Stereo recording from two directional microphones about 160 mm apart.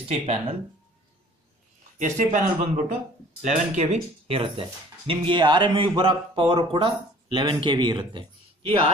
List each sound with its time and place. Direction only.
0.1 s speech: 40° right (ahead or behind)
2.0 s speech: 50° right (ahead or behind)